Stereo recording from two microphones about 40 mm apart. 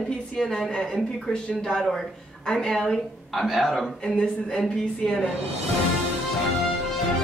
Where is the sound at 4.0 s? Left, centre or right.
Centre.